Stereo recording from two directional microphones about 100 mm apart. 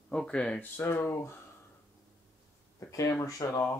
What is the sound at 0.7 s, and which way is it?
Speech, 25° left (ahead or behind).